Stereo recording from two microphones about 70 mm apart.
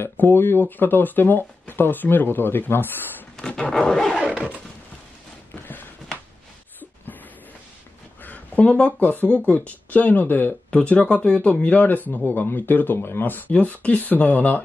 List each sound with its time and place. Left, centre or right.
0.0 s speech: left
3.3 s wild animals: centre
4.2 s a sound: centre
8.2 s speech: left